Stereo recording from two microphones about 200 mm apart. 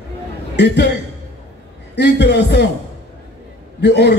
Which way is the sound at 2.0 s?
60° left (ahead or behind).